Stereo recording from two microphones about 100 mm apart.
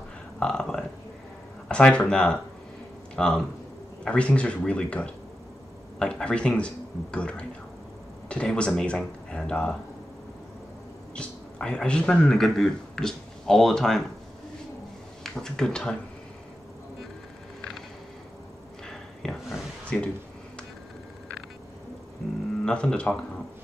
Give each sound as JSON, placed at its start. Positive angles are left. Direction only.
{"t": 0.4, "sound": "burping", "side_deg": 5}
{"t": 1.7, "sound": "speech", "side_deg": 10}
{"t": 11.1, "sound": "speech", "side_deg": 10}
{"t": 15.2, "sound": "speech", "side_deg": 5}
{"t": 18.9, "sound": "a sound", "side_deg": 5}
{"t": 22.7, "sound": "speech", "side_deg": 10}